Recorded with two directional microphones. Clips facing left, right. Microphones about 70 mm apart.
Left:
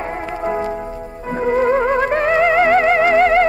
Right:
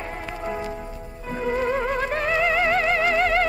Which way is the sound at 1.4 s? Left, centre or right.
Left.